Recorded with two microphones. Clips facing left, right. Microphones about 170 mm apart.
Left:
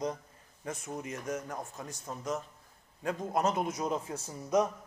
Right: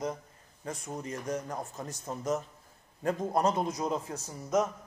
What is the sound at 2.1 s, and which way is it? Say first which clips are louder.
Speech: right 4 dB; 10° right (ahead or behind).